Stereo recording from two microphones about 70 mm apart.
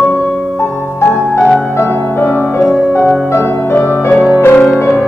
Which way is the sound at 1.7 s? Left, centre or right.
Left.